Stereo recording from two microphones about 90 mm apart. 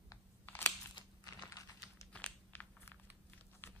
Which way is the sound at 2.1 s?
15° left (ahead or behind).